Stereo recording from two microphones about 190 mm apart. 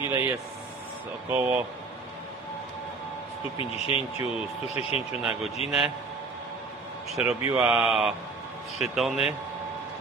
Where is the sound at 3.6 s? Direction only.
30° left (ahead or behind).